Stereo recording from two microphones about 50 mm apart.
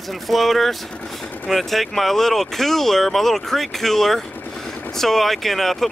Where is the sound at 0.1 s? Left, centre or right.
Centre.